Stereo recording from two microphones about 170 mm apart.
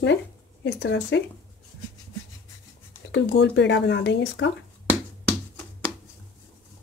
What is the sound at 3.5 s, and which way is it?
Speech, 90° left.